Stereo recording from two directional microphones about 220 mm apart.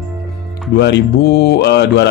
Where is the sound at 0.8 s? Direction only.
50° left (ahead or behind).